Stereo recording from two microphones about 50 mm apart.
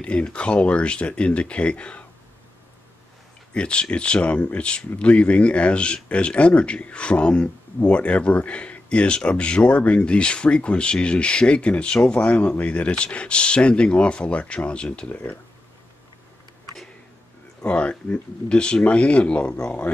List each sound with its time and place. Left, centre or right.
0.0 s speech: left
3.5 s speech: left
15.0 s speech: left
17.6 s speech: left